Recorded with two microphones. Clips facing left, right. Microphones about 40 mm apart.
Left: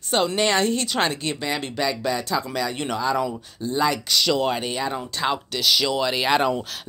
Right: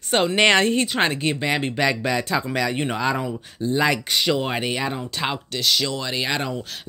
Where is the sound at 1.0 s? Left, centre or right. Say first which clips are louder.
Right 3 dB; right.